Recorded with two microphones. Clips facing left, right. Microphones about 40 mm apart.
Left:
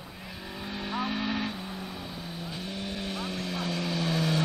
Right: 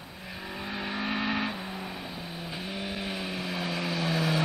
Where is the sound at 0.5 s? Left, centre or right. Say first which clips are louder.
Even; centre.